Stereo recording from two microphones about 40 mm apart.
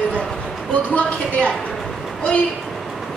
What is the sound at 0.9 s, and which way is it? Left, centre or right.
Speech, left.